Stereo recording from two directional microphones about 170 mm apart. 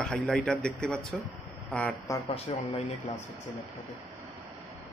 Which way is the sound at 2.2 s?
35° left (ahead or behind).